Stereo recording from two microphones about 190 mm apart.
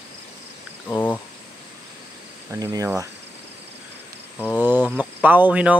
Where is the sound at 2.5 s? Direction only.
20° right (ahead or behind).